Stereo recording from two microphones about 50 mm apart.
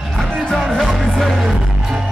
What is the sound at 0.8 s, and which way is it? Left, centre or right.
Music, centre.